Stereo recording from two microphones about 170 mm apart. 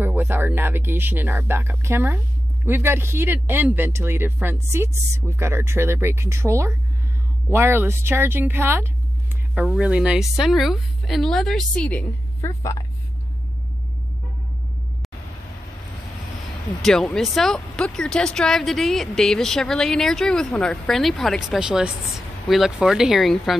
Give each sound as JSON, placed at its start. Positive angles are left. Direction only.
{"t": 0.0, "sound": "speech", "side_deg": -10}
{"t": 16.8, "sound": "speech", "side_deg": 5}